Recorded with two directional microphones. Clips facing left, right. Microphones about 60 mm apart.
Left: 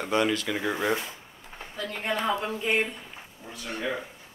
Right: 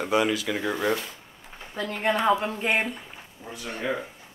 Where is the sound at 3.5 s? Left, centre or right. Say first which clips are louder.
Right 1 dB; right.